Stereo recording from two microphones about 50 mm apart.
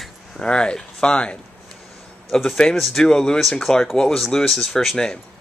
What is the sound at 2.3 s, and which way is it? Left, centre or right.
Speech, centre.